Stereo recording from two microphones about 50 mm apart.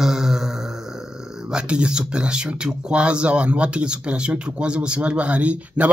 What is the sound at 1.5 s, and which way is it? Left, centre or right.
Speech, centre.